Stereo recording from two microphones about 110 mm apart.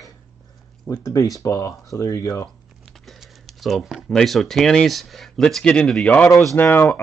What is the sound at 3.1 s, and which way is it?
Speech, centre (ahead or behind).